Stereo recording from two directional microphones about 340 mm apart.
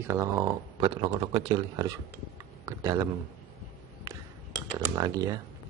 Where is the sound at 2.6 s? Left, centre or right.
Centre.